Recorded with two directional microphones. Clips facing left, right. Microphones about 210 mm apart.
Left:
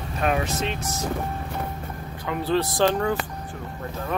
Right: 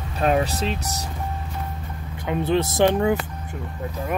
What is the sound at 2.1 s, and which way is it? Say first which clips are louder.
Speech: right 2 dB; 20° right (ahead or behind).